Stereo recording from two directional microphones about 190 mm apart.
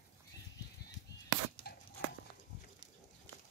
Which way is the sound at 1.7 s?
55° left (ahead or behind).